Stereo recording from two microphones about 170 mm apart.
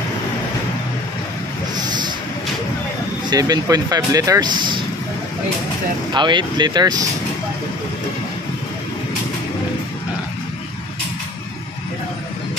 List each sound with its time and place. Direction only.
1.8 s a sound: 25° right (ahead or behind)
3.3 s speech: 25° right (ahead or behind)
6.1 s speech: 25° right (ahead or behind)